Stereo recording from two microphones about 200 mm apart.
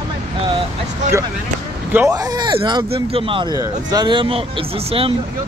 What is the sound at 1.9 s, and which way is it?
Speech, 15° right (ahead or behind).